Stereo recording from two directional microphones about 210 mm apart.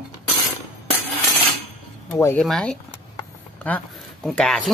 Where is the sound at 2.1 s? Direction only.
5° left (ahead or behind).